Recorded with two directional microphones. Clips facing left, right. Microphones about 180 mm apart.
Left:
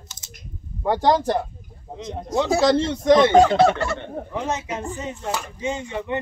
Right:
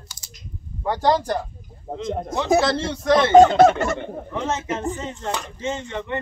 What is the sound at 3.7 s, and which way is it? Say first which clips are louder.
Speech: right 2 dB; 20° right (ahead or behind).